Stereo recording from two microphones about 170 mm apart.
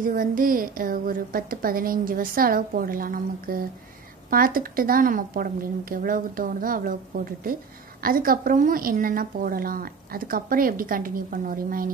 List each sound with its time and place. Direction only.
0.0 s a woman's voice: 55° right (ahead or behind)
8.0 s a woman's voice: 55° right (ahead or behind)